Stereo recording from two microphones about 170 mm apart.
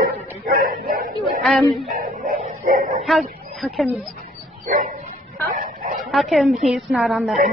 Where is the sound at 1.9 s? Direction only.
55° right (ahead or behind).